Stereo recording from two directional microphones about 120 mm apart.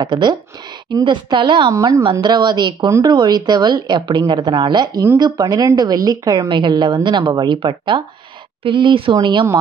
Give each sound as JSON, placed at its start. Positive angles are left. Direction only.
{"t": 0.0, "sound": "a woman's voice", "side_deg": -35}